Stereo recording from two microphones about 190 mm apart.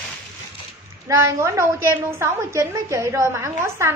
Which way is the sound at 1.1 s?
15° right (ahead or behind).